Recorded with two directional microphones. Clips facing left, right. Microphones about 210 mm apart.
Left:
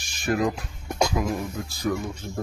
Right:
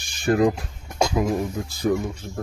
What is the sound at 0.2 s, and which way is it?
Speech, 30° right (ahead or behind).